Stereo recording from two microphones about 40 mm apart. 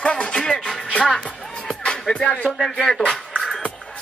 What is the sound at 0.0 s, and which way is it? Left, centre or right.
Music, left.